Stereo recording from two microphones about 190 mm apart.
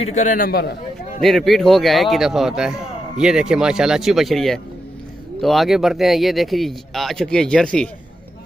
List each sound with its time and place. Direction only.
0.0 s a man's voice: 40° left (ahead or behind)
1.2 s speech: centre (ahead or behind)